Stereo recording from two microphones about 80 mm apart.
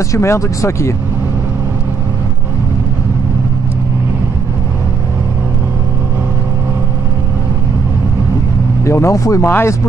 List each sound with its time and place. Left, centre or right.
0.1 s speech: left
8.8 s speech: left
9.5 s speech: left